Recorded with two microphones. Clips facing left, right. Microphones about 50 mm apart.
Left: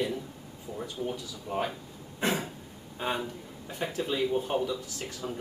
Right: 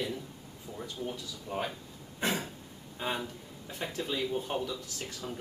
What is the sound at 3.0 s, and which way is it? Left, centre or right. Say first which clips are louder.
Speech: left 3 dB; centre.